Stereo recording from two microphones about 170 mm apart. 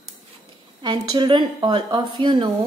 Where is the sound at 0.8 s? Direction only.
25° right (ahead or behind).